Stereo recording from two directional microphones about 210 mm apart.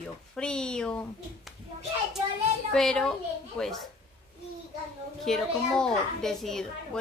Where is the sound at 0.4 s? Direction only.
5° left (ahead or behind).